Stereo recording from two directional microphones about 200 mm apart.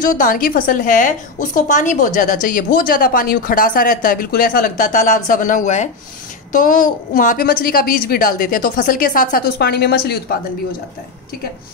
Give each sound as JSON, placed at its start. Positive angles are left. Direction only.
{"t": 0.0, "sound": "a woman's voice", "side_deg": 40}